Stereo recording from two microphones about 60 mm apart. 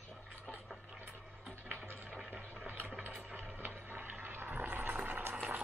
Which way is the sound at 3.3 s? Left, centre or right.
Right.